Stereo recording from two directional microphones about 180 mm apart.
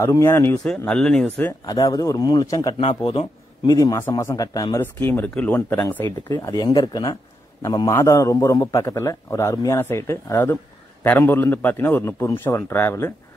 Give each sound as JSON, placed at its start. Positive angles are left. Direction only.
{"t": 0.0, "sound": "a man's voice", "side_deg": 15}
{"t": 1.7, "sound": "a man's voice", "side_deg": 20}